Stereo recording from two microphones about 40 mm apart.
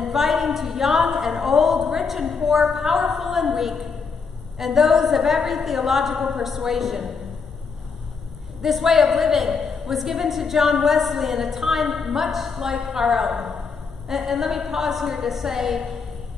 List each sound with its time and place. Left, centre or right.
0.0 s a woman's voice: centre
8.6 s a woman's voice: centre